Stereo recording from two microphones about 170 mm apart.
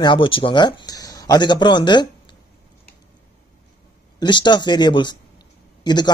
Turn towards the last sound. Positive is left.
turn(degrees=25)  # may be behind; listen again after turning